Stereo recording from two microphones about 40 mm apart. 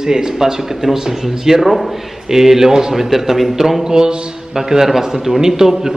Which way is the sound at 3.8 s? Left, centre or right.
Centre.